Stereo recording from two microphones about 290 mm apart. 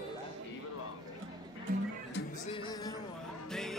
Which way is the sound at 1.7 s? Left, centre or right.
Right.